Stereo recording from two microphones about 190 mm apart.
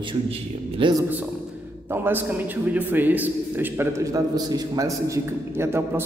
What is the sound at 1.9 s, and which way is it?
A man's voice, 10° right (ahead or behind).